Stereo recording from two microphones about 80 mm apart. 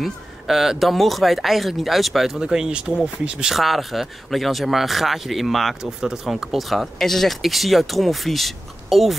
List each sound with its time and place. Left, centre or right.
0.0 s speech: centre